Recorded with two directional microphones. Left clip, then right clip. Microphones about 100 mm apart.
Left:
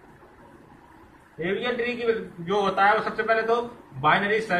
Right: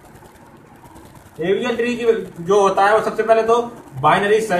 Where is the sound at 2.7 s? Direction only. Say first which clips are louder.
Right 6 dB; 45° right (ahead or behind).